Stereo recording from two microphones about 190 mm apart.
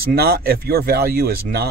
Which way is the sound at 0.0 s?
55° right (ahead or behind).